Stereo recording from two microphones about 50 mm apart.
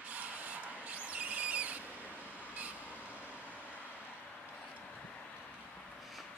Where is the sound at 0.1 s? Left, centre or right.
Right.